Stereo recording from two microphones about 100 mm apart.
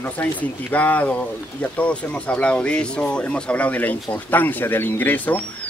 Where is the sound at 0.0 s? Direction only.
15° left (ahead or behind).